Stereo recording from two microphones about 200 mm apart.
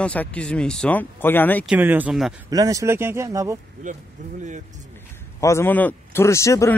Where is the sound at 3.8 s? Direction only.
40° right (ahead or behind).